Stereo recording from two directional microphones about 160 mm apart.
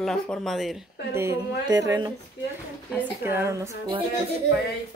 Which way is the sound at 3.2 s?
15° right (ahead or behind).